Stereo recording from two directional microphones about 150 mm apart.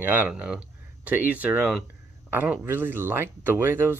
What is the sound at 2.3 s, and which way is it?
Speech, 10° right (ahead or behind).